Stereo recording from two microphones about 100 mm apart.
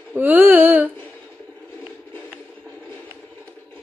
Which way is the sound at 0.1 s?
20° right (ahead or behind).